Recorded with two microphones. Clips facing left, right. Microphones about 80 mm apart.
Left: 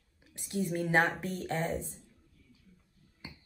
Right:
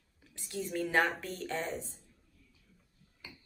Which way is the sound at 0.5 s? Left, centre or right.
Centre.